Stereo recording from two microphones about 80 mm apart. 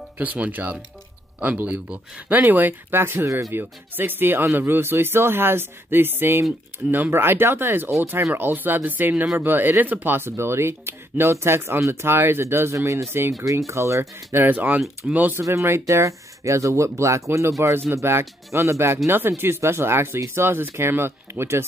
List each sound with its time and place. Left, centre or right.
0.2 s speech: centre
15.4 s speech: right